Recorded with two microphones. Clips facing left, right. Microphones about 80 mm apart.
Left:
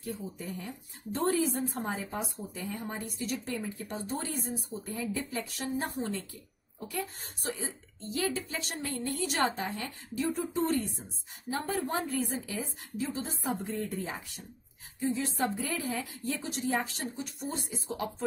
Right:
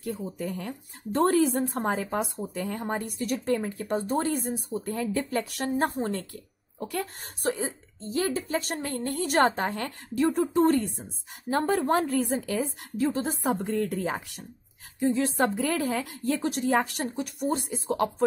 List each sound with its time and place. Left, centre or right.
0.0 s speech: right
6.8 s speech: right
8.1 s a woman's voice: right